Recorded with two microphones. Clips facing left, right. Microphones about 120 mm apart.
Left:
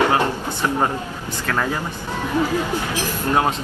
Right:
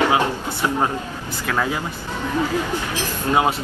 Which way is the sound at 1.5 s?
10° right (ahead or behind).